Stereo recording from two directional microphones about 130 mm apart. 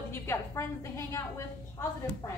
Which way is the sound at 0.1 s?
20° left (ahead or behind).